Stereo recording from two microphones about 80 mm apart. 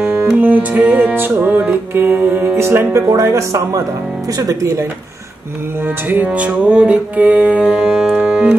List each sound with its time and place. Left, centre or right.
0.0 s music: right
3.1 s speech: right
6.0 s music: centre